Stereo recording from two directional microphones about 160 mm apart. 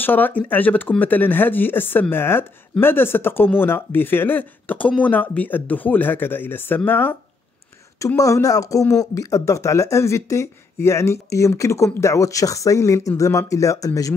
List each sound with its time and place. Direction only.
0.0 s speech: 10° left (ahead or behind)